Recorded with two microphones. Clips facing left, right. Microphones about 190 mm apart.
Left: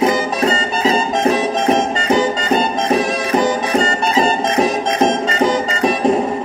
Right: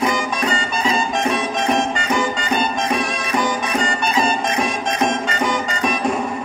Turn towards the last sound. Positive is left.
turn(degrees=35)  # may be behind; listen again after turning